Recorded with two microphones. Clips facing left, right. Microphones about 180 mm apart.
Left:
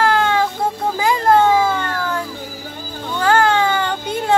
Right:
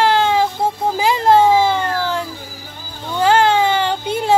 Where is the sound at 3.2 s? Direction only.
25° right (ahead or behind).